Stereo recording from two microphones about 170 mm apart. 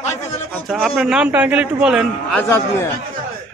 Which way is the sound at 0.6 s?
5° right (ahead or behind).